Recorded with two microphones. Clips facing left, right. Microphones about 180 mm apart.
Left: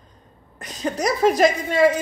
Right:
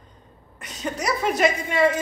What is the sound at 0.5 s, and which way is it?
A woman's voice, 40° left (ahead or behind).